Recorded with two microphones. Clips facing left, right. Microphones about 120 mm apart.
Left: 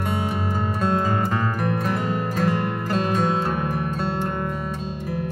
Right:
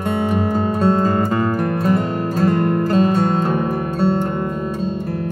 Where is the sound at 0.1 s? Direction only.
50° right (ahead or behind).